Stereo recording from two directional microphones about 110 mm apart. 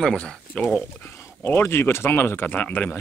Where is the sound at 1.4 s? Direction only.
20° left (ahead or behind).